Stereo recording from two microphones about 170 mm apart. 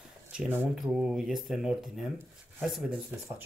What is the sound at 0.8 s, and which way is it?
Speech, centre (ahead or behind).